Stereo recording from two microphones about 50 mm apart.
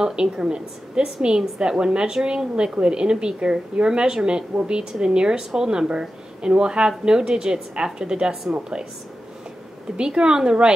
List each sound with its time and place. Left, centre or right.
0.0 s a woman's voice: centre
9.9 s a woman's voice: centre